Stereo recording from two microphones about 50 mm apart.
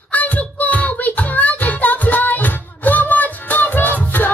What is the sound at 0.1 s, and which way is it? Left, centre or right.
Music, left.